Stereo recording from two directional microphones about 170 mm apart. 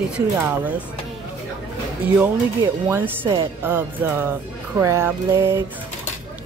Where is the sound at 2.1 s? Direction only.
15° right (ahead or behind).